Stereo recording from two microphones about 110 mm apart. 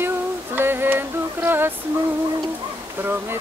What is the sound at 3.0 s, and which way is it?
Speech, 20° right (ahead or behind).